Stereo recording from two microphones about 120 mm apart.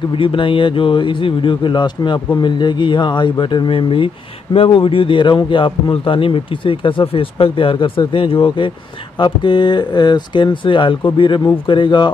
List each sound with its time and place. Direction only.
0.2 s a man's voice: 45° left (ahead or behind)